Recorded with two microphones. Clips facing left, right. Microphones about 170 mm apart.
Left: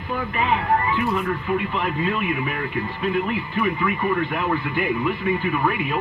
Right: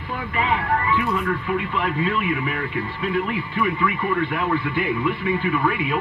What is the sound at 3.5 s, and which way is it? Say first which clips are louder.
Speech: right 1 dB; 45° left (ahead or behind).